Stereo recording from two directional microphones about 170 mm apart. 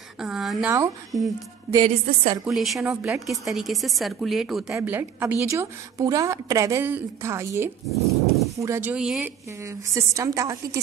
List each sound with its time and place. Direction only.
0.2 s a woman's voice: centre (ahead or behind)
1.1 s speech: 20° right (ahead or behind)
2.4 s a woman's voice: centre (ahead or behind)
4.7 s a woman's voice: 10° right (ahead or behind)
8.9 s a woman's voice: 5° right (ahead or behind)
9.6 s a woman's voice: 15° right (ahead or behind)